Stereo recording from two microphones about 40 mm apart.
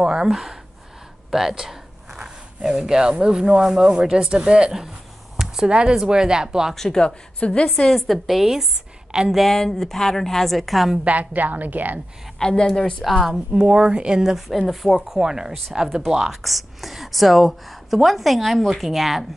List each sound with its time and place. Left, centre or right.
0.0 s speech: centre
1.3 s a sound: centre
2.7 s speech: centre
6.7 s a woman's voice: centre
7.3 s a woman's voice: left
7.7 s a woman's voice: centre
8.1 s a woman's voice: centre
9.5 s a woman's voice: centre
11.1 s a woman's voice: right
12.4 s a woman's voice: centre
13.3 s a woman's voice: centre